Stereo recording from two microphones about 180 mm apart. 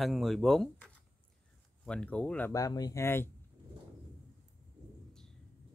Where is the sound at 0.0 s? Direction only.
Centre (ahead or behind).